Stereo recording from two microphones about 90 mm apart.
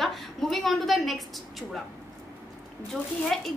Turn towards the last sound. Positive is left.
turn(degrees=5)  # may be behind; listen again after turning